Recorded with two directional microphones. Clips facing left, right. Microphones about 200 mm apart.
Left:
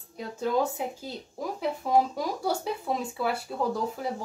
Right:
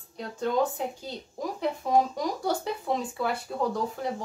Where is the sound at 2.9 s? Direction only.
5° left (ahead or behind).